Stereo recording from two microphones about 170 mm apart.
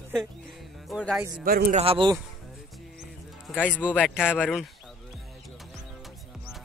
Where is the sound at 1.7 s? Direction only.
35° right (ahead or behind).